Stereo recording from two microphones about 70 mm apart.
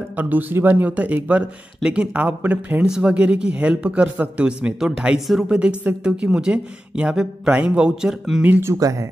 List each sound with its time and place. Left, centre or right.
0.1 s a woman's voice: right; by 5.5 s centre
5.5 s speech: centre
8.5 s speech: right
8.7 s speech: right